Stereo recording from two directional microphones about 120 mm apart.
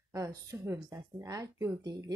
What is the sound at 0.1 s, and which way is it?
A woman's voice, 25° right (ahead or behind).